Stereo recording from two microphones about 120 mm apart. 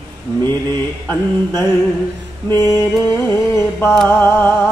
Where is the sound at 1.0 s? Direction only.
20° left (ahead or behind).